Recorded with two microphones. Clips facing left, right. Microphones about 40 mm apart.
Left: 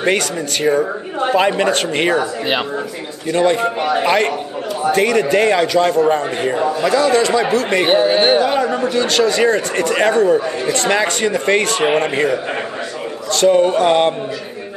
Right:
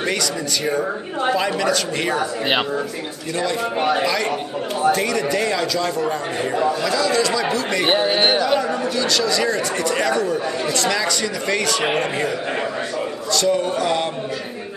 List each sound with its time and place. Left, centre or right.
1.3 s speech: left
3.3 s a man's voice: left
7.1 s speech: left
7.8 s speech: centre
8.4 s speech: left